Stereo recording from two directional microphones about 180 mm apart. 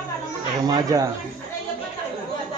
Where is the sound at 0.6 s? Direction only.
20° right (ahead or behind).